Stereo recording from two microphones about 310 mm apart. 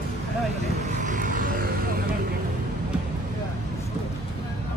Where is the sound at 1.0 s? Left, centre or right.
Right.